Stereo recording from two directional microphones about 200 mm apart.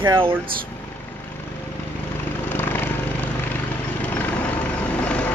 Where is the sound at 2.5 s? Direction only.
10° left (ahead or behind).